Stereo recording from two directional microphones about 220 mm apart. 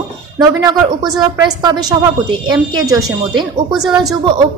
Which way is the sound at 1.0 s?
20° right (ahead or behind).